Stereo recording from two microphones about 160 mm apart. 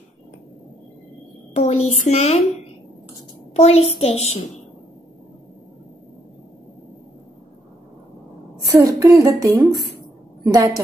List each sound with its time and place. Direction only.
1.5 s a child's voice: 40° left (ahead or behind)
3.5 s a child's voice: 40° left (ahead or behind)
8.7 s a sound: 20° right (ahead or behind)
10.4 s a woman's voice: 20° right (ahead or behind)